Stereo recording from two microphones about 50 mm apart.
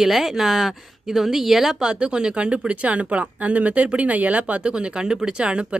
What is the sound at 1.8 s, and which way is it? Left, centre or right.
Speech, centre.